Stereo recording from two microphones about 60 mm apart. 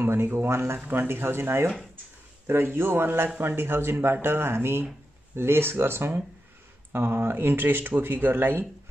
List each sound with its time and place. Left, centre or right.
0.0 s speech: right